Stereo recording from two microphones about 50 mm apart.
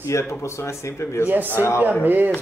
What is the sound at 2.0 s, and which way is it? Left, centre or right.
Speech, right.